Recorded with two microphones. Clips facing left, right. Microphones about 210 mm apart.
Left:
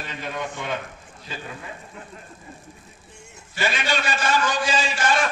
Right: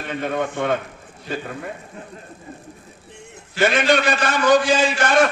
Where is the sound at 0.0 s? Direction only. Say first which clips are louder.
Right 7 dB; 55° right (ahead or behind).